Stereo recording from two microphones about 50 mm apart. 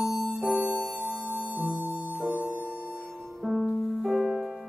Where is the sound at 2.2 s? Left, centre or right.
Centre.